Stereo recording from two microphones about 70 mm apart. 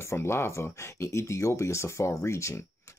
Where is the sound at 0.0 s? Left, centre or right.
Left.